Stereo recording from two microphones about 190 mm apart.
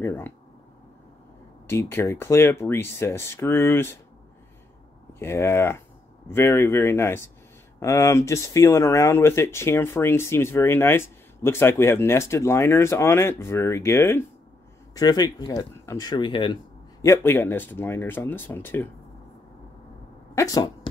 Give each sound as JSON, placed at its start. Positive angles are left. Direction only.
{"t": 0.0, "sound": "speech", "side_deg": 10}
{"t": 1.7, "sound": "speech", "side_deg": 10}
{"t": 5.2, "sound": "speech", "side_deg": 15}
{"t": 17.0, "sound": "speech", "side_deg": 15}
{"t": 20.3, "sound": "speech", "side_deg": 20}